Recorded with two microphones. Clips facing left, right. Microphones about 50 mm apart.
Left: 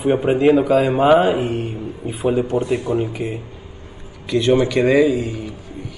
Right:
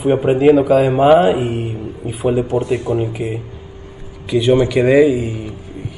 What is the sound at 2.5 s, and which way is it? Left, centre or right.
Speech, right.